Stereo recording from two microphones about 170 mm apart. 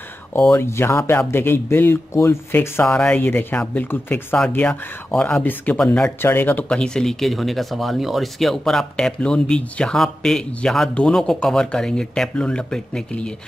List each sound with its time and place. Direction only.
0.3 s speech: 15° left (ahead or behind)